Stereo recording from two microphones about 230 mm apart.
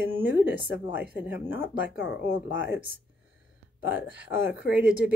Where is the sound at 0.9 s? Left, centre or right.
Centre.